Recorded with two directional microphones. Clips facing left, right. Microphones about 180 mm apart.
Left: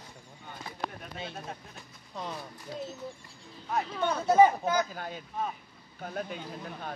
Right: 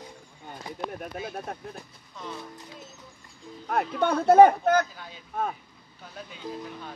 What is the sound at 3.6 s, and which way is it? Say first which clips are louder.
Speech: right 5 dB; 55° right (ahead or behind).